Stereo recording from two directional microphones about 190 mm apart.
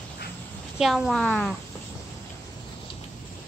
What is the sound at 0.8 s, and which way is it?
Speech, centre (ahead or behind).